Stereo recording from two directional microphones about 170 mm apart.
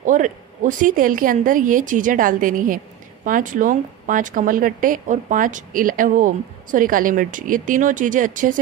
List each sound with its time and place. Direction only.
0.0 s speech: 50° right (ahead or behind)